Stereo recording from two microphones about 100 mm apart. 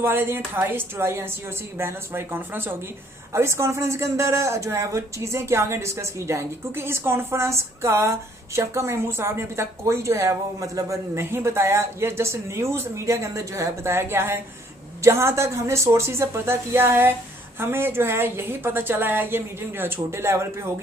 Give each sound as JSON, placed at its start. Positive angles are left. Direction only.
{"t": 0.0, "sound": "speech", "side_deg": -25}